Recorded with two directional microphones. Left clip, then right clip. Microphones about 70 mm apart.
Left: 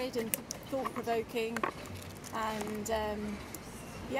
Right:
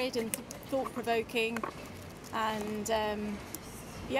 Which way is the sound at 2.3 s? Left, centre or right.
Centre.